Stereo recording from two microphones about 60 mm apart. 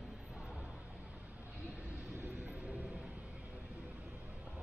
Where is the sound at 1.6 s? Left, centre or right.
Right.